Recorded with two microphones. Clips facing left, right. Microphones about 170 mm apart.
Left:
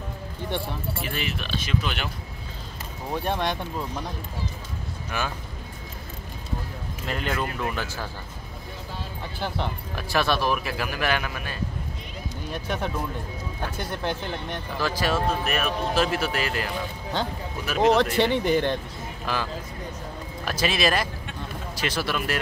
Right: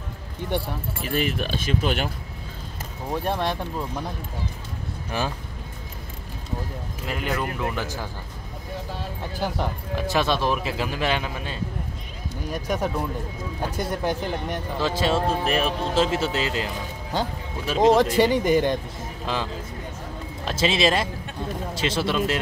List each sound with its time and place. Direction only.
1.0 s speech: 45° right (ahead or behind)
3.1 s speech: centre (ahead or behind)
5.1 s speech: 30° right (ahead or behind)
7.1 s speech: 10° right (ahead or behind)
9.4 s speech: 10° right (ahead or behind)
10.0 s speech: 20° right (ahead or behind)
12.6 s speech: 10° right (ahead or behind)
14.0 s speech: 10° right (ahead or behind)
14.8 s speech: 25° right (ahead or behind)
17.9 s speech: 10° right (ahead or behind)
19.2 s speech: 25° right (ahead or behind)